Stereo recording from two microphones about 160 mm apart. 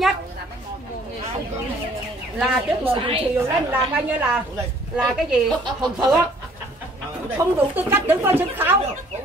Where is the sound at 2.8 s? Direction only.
35° right (ahead or behind).